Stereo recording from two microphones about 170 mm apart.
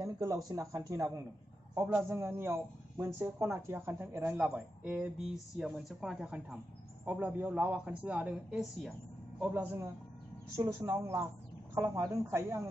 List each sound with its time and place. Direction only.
0.0 s a man's voice: 20° right (ahead or behind)